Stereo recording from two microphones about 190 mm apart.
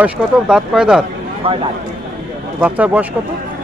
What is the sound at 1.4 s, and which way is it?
Speech, 30° right (ahead or behind).